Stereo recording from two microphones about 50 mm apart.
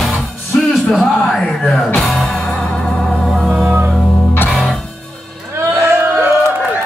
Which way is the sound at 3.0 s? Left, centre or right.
Centre.